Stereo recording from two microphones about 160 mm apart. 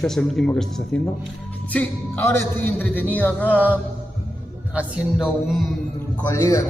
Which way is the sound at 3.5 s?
10° right (ahead or behind).